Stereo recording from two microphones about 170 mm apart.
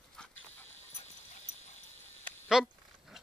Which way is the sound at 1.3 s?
40° left (ahead or behind).